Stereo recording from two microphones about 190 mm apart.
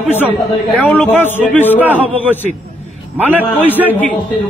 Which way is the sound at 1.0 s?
10° left (ahead or behind).